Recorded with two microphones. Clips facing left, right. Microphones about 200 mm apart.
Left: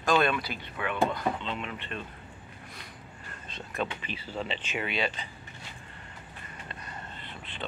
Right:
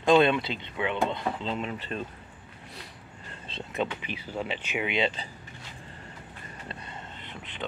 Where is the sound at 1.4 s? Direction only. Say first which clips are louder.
Right 4 dB; 35° right (ahead or behind).